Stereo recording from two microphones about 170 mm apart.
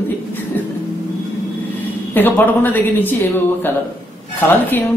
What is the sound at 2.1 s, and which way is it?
A woman's voice, 10° left (ahead or behind).